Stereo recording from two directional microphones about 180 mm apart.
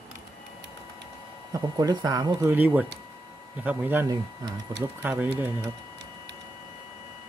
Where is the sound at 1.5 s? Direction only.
20° right (ahead or behind).